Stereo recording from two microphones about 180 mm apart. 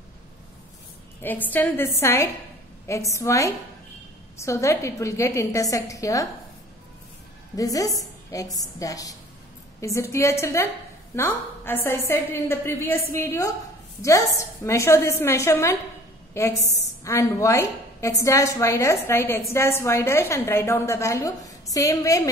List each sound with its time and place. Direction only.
1.2 s a woman's voice: 10° left (ahead or behind)
7.5 s a woman's voice: 20° left (ahead or behind)